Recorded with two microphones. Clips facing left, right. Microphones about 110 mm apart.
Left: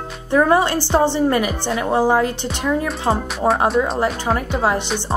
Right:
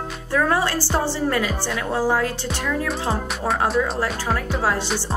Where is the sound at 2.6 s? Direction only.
30° left (ahead or behind).